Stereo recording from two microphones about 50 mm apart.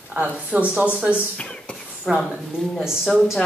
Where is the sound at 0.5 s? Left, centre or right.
Right.